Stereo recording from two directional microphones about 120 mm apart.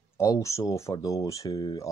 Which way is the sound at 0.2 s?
25° left (ahead or behind).